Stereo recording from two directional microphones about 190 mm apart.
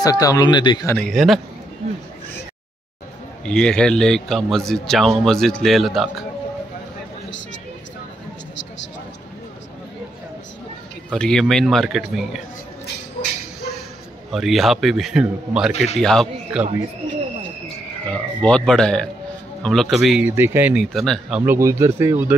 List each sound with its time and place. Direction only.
0.0 s speech: 20° left (ahead or behind)
0.9 s a man's voice: 5° left (ahead or behind)
3.4 s a man's voice: 5° left (ahead or behind)
11.1 s a man's voice: 5° left (ahead or behind)
14.3 s a man's voice: centre (ahead or behind)
15.7 s a man's voice: 35° left (ahead or behind)
16.0 s a man's voice: centre (ahead or behind)
18.1 s a man's voice: 5° left (ahead or behind); by 22.2 s 15° right (ahead or behind)